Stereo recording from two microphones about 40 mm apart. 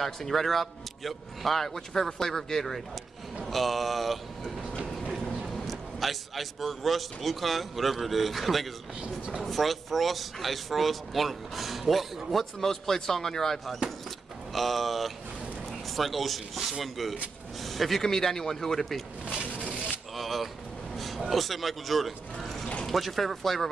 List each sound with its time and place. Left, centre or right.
0.0 s speech: centre
5.5 s speech: centre
9.0 s speech: right
9.4 s speech: centre
20.2 s a sound: centre
20.9 s vehicle: centre
21.3 s speech: centre